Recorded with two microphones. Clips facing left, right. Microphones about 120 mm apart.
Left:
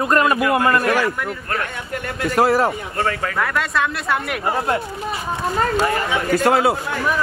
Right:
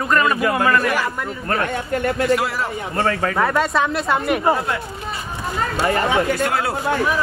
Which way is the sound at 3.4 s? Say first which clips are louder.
Right 2 dB; 25° right (ahead or behind).